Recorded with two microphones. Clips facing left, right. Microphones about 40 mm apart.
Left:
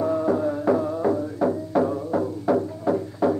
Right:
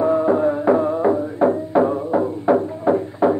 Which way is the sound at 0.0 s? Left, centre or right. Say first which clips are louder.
Right 6 dB; right.